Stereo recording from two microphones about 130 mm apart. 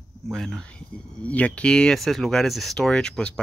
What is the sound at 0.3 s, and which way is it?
Speech, 5° left (ahead or behind).